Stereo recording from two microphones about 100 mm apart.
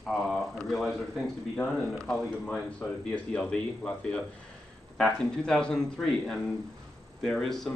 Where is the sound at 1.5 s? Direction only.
15° left (ahead or behind).